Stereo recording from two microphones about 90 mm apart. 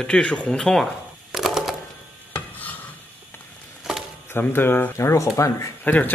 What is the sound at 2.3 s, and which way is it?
Filing, 20° left (ahead or behind).